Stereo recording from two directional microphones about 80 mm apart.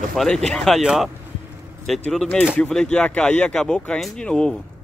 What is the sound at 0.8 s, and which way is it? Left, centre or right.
Speech, centre.